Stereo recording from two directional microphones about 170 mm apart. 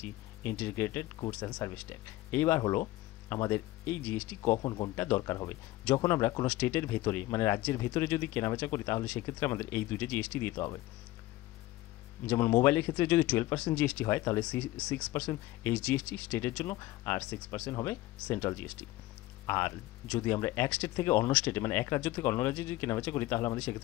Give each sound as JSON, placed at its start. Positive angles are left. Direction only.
{"t": 0.0, "sound": "speech", "side_deg": 10}
{"t": 4.4, "sound": "speech", "side_deg": 20}
{"t": 12.3, "sound": "speech", "side_deg": 15}